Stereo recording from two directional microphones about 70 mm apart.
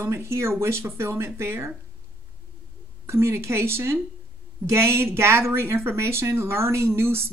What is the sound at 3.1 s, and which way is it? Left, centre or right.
Speech, right.